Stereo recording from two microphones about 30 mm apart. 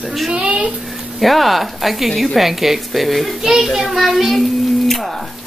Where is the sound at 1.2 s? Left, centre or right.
Centre.